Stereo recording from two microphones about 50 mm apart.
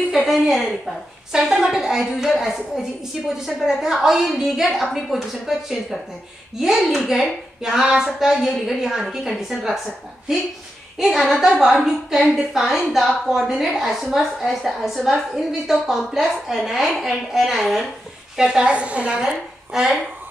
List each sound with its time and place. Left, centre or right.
0.3 s a woman's voice: centre
11.0 s a woman's voice: centre
18.3 s a woman's voice: centre
19.1 s a woman's voice: centre